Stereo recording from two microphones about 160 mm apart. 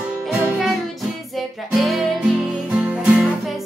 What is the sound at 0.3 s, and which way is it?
Music, 5° right (ahead or behind).